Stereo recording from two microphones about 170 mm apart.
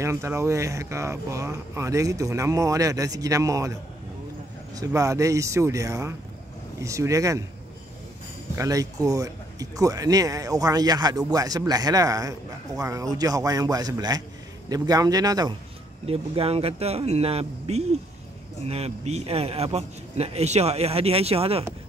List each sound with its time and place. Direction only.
0.0 s speech: 15° right (ahead or behind)
4.7 s speech: 20° right (ahead or behind)
8.5 s speech: 20° right (ahead or behind)
16.1 s a man's voice: 35° right (ahead or behind)